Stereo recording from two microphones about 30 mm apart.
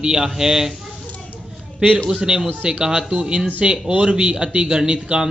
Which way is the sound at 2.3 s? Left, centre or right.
Right.